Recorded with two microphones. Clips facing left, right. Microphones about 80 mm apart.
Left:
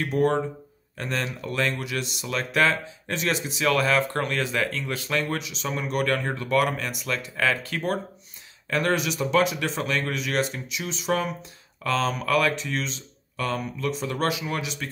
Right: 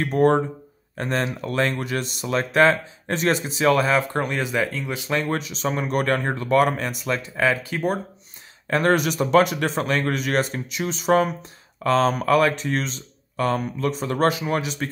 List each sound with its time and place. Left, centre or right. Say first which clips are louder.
0.0 s speech: right 4 dB; right; by 5.2 s centre
5.2 s speech: right 4 dB; right
7.3 s speech: right 3 dB; centre
8.6 s a man's voice: right 5 dB; right